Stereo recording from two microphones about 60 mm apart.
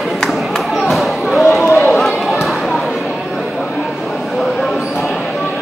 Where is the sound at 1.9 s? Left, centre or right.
Centre.